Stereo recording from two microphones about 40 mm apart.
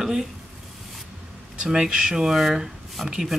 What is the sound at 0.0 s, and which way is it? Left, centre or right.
Speech, centre.